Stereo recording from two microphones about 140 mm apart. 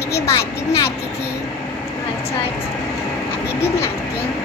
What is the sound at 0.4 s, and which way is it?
Speech, 20° left (ahead or behind).